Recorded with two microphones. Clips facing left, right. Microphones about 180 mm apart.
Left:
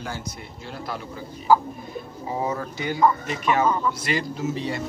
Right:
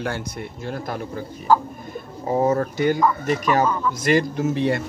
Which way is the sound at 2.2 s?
45° right (ahead or behind).